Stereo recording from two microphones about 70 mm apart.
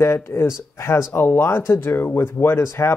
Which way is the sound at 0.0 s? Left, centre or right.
Left.